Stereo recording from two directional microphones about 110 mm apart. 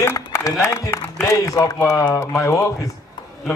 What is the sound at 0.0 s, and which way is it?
A man's voice, 25° left (ahead or behind).